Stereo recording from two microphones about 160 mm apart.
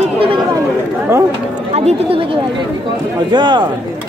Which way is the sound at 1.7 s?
40° right (ahead or behind).